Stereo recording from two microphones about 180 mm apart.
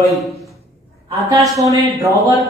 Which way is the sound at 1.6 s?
20° right (ahead or behind).